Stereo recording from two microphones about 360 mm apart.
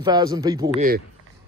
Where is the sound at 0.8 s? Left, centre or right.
Right.